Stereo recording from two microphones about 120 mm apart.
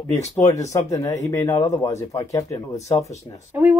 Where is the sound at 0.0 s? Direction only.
25° left (ahead or behind).